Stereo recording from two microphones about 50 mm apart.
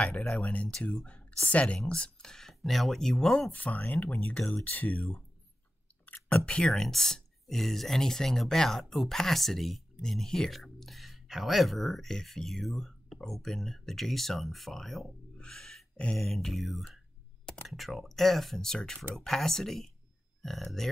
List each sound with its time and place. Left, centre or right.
0.3 s speech: left
2.3 s speech: centre
3.5 s speech: left
4.2 s speech: left
6.2 s speech: left
6.7 s speech: centre
15.3 s a sound: centre
16.2 s speech: centre